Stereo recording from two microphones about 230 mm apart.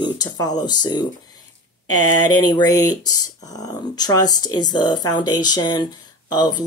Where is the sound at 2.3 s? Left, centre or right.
Centre.